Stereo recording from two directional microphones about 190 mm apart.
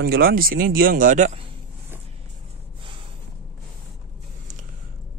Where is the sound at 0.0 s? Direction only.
50° right (ahead or behind).